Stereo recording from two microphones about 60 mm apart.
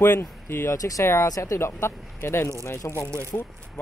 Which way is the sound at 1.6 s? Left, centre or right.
Left.